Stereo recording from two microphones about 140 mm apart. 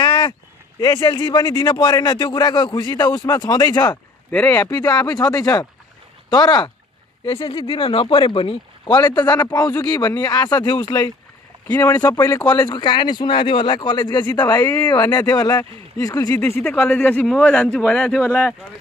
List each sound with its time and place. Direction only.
0.0 s a sound: 35° left (ahead or behind)
0.7 s speech: 30° left (ahead or behind)
4.3 s a man's voice: 10° left (ahead or behind)
4.6 s speech: 25° left (ahead or behind)
11.6 s speech: 15° left (ahead or behind)
12.0 s speech: 25° left (ahead or behind)
16.6 s a man's voice: 10° left (ahead or behind)